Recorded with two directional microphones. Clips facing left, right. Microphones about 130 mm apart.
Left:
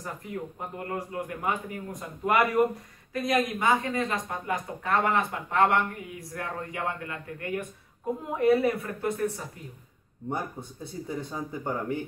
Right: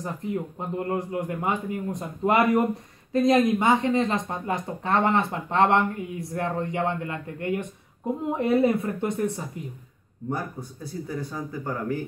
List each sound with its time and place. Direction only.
0.0 s speech: 25° right (ahead or behind)
10.3 s speech: 20° left (ahead or behind)